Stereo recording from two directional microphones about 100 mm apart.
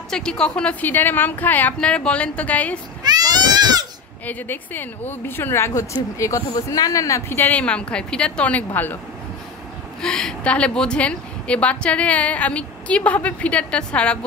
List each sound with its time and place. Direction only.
0.1 s a woman's voice: 5° left (ahead or behind)
3.0 s baby cry: 45° right (ahead or behind)
4.3 s speech: 20° left (ahead or behind)
10.0 s a woman's voice: 5° left (ahead or behind)